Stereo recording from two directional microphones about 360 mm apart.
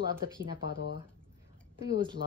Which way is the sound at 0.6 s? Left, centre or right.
Left.